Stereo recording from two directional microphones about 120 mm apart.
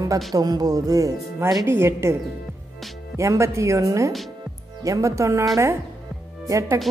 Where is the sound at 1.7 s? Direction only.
20° right (ahead or behind).